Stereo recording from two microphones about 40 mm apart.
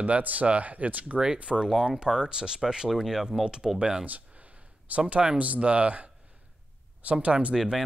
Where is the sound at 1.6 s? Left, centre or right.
Centre.